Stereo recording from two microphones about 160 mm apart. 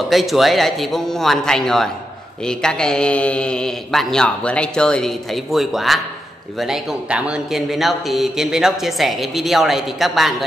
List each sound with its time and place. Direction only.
0.1 s a man's voice: centre (ahead or behind)